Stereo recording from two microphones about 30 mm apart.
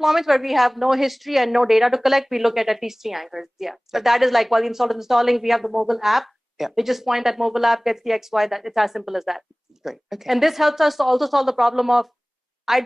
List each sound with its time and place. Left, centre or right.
0.0 s a woman's voice: centre